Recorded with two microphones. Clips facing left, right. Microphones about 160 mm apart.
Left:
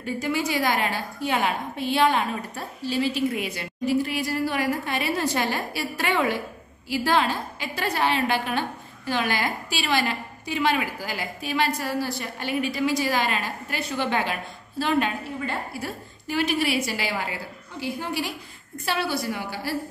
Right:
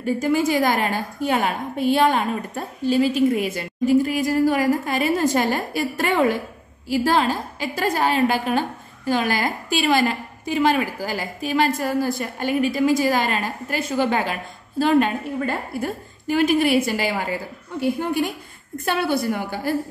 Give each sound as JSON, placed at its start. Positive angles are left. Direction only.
{"t": 0.0, "sound": "a woman's voice", "side_deg": -45}
{"t": 18.9, "sound": "a woman's voice", "side_deg": -55}